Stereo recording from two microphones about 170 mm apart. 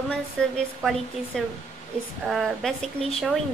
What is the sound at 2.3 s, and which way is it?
A woman's voice, centre (ahead or behind).